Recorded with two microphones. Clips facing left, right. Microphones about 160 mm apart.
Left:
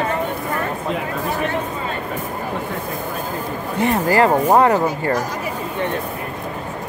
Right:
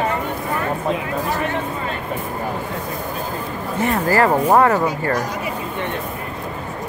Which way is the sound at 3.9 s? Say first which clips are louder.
Left 1 dB; 20° left (ahead or behind).